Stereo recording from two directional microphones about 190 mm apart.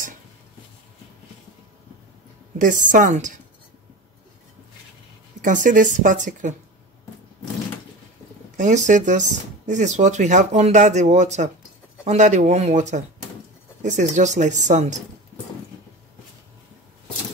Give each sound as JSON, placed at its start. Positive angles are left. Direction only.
{"t": 2.6, "sound": "speech", "side_deg": -45}
{"t": 5.4, "sound": "speech", "side_deg": -40}
{"t": 8.5, "sound": "speech", "side_deg": -40}